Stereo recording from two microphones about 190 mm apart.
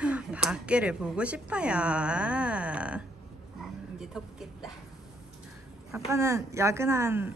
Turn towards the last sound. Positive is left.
turn(degrees=-15)  # may be behind; listen again after turning